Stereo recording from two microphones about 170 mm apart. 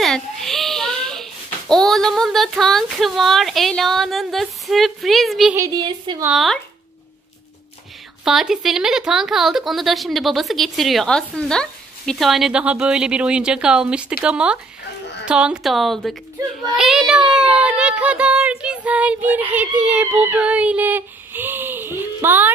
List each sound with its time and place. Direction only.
0.0 s a child's voice: centre (ahead or behind)
5.6 s a woman's voice: 25° right (ahead or behind)
6.3 s a woman's voice: centre (ahead or behind)
8.2 s a woman's voice: 5° right (ahead or behind)